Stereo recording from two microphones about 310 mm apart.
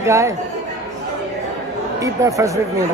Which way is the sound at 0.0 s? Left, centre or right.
Centre.